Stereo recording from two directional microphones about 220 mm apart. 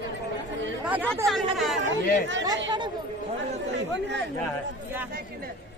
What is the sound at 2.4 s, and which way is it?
Speech, 20° right (ahead or behind).